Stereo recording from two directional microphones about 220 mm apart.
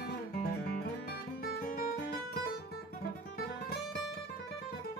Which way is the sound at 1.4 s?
40° left (ahead or behind).